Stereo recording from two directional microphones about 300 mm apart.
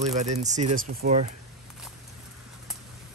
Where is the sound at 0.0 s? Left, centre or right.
Right.